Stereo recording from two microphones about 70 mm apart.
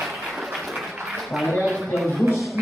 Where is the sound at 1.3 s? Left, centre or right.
Centre.